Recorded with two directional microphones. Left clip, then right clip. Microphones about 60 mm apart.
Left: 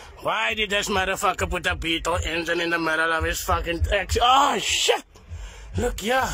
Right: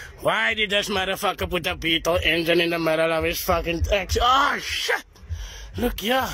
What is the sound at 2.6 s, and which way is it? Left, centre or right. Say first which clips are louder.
Speech: right 1 dB; centre.